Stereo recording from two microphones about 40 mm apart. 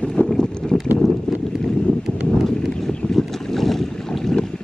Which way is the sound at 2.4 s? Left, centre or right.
Centre.